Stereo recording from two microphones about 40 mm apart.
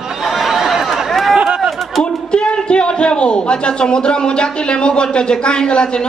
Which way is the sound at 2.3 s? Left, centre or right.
Left.